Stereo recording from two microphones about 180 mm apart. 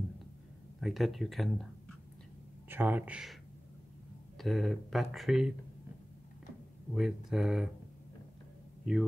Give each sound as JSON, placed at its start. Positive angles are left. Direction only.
{"t": 0.7, "sound": "speech", "side_deg": 0}
{"t": 2.7, "sound": "speech", "side_deg": -10}
{"t": 4.4, "sound": "speech", "side_deg": 0}
{"t": 6.9, "sound": "speech", "side_deg": 0}